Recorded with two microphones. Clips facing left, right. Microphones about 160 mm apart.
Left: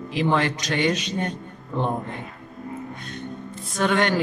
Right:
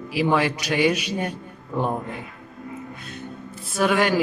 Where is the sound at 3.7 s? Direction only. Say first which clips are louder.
Right 1 dB; 5° right (ahead or behind).